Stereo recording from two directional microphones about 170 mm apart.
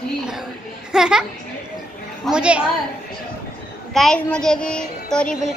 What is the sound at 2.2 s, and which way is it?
Speech, 5° right (ahead or behind).